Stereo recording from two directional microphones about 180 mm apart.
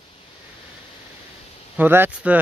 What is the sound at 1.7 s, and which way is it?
Speech, 10° right (ahead or behind).